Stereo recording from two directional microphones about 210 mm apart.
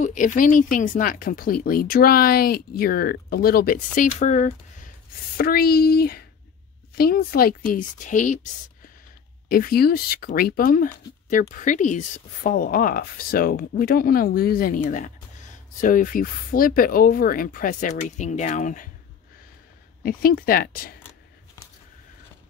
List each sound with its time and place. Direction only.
0.0 s speech: 35° left (ahead or behind)
5.4 s speech: 45° left (ahead or behind)
9.5 s speech: 45° left (ahead or behind)
15.8 s speech: 40° left (ahead or behind)
20.0 s speech: 45° left (ahead or behind)